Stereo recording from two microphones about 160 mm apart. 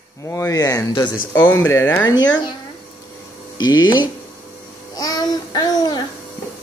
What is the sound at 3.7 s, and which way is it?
Speech, 25° left (ahead or behind).